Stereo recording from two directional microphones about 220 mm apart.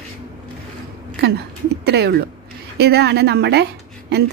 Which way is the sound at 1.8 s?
50° right (ahead or behind).